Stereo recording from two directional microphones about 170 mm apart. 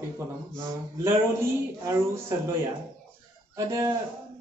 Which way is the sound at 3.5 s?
20° right (ahead or behind).